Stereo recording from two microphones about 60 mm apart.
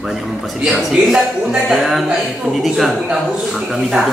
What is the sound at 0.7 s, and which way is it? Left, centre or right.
A man's voice, centre.